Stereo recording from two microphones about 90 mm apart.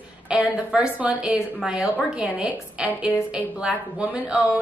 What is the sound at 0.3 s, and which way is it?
A woman's voice, 10° right (ahead or behind).